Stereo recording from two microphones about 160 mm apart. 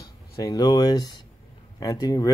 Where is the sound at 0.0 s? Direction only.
25° left (ahead or behind).